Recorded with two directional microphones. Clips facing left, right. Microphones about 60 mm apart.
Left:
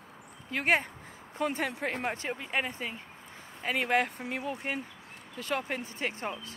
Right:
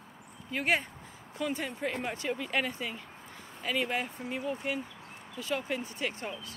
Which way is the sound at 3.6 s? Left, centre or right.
Left.